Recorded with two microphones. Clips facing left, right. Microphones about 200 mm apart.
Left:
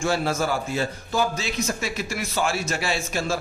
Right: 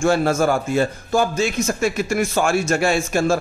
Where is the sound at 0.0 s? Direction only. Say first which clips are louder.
Right 7 dB; 50° right (ahead or behind).